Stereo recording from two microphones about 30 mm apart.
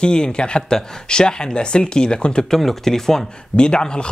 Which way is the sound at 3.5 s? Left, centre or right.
Left.